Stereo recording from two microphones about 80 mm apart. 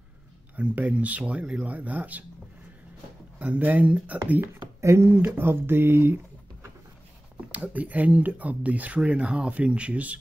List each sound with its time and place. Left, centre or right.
0.6 s speech: centre
3.3 s speech: centre
4.8 s speech: right
5.1 s speech: right